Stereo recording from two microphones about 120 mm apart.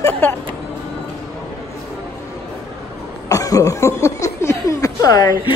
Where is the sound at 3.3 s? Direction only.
30° left (ahead or behind).